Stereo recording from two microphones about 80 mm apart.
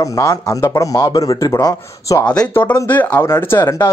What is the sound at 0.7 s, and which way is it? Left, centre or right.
Speech, left.